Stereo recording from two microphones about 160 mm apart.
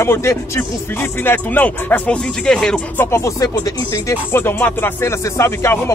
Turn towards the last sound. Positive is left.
turn(degrees=15)  # may be behind; listen again after turning